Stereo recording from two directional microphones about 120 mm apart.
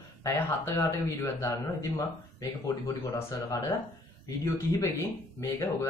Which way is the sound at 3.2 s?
25° left (ahead or behind).